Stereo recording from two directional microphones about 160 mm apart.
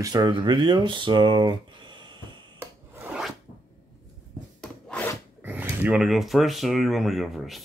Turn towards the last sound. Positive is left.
turn(degrees=0)  # may be behind; listen again after turning